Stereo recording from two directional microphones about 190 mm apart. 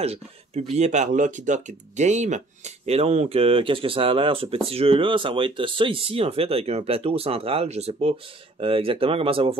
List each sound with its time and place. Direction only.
0.0 s speech: 35° right (ahead or behind)